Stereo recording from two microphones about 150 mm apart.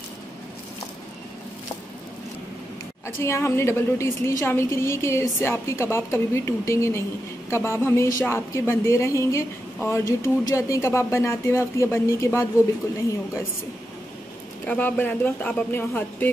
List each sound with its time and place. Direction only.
3.2 s a woman's voice: 15° left (ahead or behind)
14.7 s a woman's voice: 15° left (ahead or behind)